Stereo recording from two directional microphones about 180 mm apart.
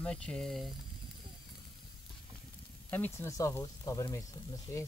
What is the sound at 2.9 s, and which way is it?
Speech, 10° left (ahead or behind).